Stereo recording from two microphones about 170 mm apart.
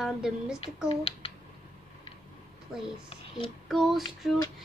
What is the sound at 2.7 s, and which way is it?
A child's voice, 5° right (ahead or behind).